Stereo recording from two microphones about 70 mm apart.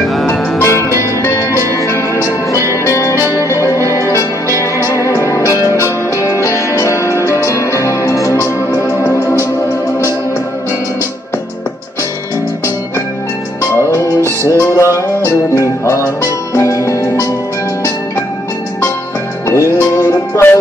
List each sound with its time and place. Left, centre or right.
0.6 s music: left
13.7 s music: left
19.4 s music: left